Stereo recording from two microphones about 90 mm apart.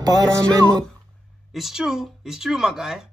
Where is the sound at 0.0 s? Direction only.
45° right (ahead or behind).